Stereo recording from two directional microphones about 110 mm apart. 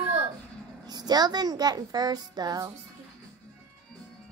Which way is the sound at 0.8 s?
40° right (ahead or behind).